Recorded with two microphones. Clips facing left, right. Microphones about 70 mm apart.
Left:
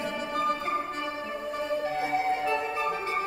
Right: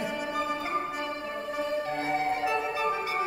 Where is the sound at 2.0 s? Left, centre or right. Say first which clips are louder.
Left 1 dB; centre.